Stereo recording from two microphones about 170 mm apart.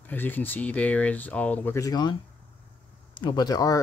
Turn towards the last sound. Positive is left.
turn(degrees=20)  # may be behind; listen again after turning